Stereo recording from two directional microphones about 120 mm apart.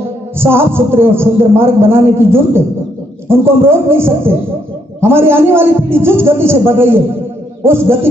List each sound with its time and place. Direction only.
0.4 s a man's voice: 20° right (ahead or behind)